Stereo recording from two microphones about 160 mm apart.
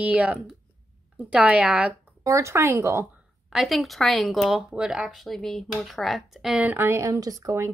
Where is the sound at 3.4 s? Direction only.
Centre (ahead or behind).